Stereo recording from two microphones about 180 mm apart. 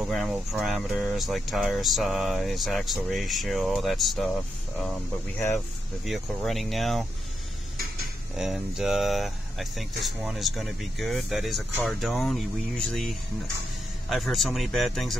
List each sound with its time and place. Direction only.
0.0 s speech: centre (ahead or behind)
6.0 s speech: centre (ahead or behind)
8.4 s speech: centre (ahead or behind)